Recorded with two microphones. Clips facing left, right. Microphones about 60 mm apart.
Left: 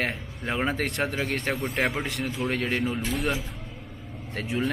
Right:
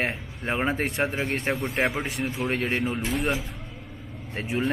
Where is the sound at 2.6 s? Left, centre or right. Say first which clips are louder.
Even; right.